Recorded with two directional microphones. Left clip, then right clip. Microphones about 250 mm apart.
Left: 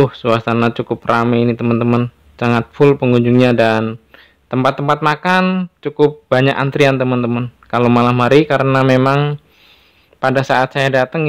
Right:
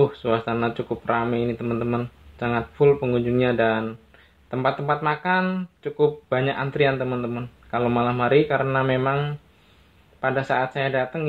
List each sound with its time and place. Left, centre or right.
0.0 s speech: left